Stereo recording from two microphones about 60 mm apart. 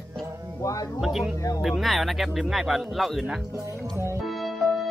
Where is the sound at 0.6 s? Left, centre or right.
Left.